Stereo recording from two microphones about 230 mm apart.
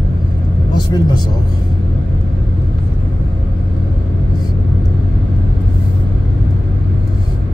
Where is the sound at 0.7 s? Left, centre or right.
Centre.